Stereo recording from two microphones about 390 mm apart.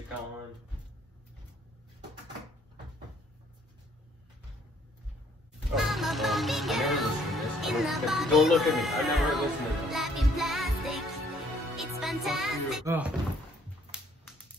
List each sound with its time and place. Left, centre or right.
5.9 s music: centre